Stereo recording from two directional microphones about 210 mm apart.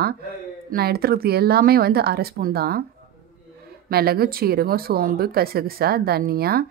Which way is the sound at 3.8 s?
45° right (ahead or behind).